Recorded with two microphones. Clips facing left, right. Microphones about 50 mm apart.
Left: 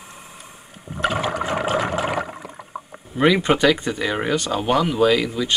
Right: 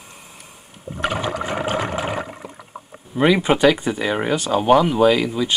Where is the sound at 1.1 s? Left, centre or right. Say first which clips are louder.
Left 1 dB; left.